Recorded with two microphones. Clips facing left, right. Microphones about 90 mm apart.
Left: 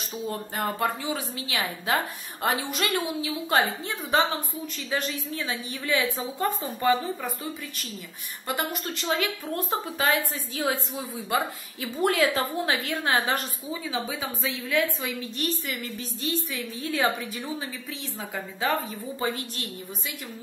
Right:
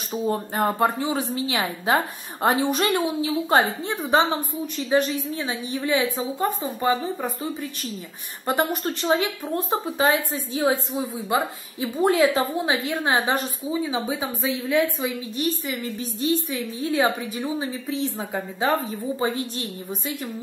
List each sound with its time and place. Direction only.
0.1 s a woman's voice: 30° right (ahead or behind)
8.5 s a woman's voice: 30° right (ahead or behind)